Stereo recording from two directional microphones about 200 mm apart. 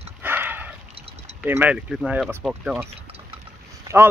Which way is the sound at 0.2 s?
10° right (ahead or behind).